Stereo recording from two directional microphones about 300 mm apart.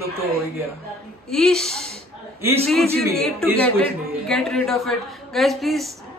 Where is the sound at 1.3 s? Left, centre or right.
Centre.